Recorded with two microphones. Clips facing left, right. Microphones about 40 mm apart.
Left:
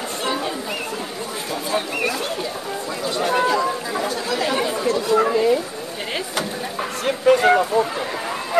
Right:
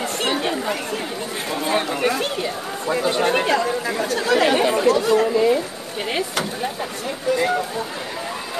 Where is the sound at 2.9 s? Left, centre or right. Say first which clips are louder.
Right 3 dB; right.